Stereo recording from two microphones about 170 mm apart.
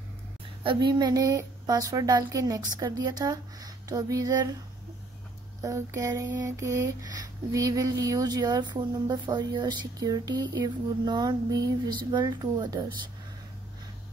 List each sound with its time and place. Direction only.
0.7 s speech: 25° right (ahead or behind)
5.6 s mantra: 15° right (ahead or behind)
7.5 s speech: 20° right (ahead or behind)